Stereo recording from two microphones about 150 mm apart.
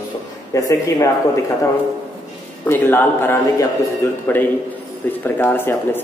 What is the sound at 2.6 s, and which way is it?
Speech, 15° left (ahead or behind).